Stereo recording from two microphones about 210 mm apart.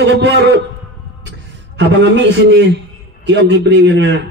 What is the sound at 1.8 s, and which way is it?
A man's voice, 55° right (ahead or behind).